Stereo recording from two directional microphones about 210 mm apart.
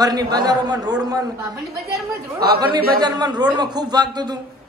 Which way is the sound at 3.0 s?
20° right (ahead or behind).